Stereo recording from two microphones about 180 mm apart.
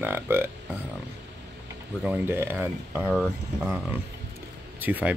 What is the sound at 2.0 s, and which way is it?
Speech, 10° right (ahead or behind).